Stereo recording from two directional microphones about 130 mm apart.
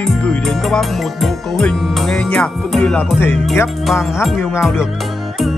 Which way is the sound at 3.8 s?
Centre (ahead or behind).